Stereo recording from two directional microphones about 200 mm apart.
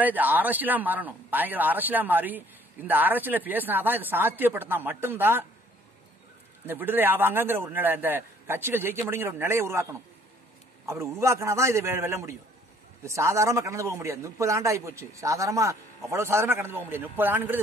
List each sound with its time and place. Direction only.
0.0 s a man's voice: 10° right (ahead or behind)
6.6 s a man's voice: 10° right (ahead or behind)